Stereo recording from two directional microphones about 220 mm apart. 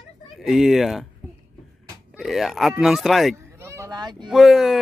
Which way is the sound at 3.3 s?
10° right (ahead or behind).